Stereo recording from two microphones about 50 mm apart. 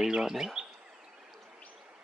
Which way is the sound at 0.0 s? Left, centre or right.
Centre.